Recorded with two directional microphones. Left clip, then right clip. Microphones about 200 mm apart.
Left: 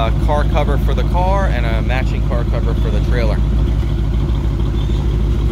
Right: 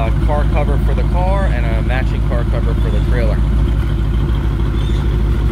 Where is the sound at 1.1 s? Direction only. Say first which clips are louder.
Left 2 dB; 15° left (ahead or behind).